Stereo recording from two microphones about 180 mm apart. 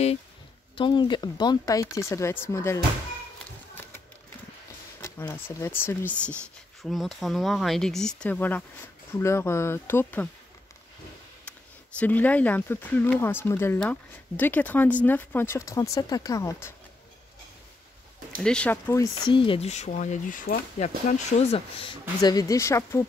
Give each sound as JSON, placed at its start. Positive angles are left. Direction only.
{"t": 0.7, "sound": "speech", "side_deg": 25}
{"t": 5.0, "sound": "speech", "side_deg": 15}
{"t": 12.0, "sound": "speech", "side_deg": 10}
{"t": 18.4, "sound": "speech", "side_deg": 5}
{"t": 19.3, "sound": "speech", "side_deg": 30}
{"t": 22.2, "sound": "speech", "side_deg": 20}